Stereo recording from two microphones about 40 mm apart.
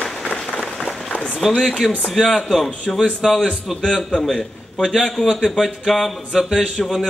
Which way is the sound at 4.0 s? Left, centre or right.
Centre.